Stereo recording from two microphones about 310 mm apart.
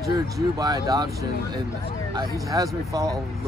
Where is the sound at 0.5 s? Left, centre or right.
Centre.